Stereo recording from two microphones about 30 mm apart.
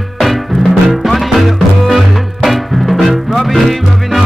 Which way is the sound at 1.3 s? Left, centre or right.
Centre.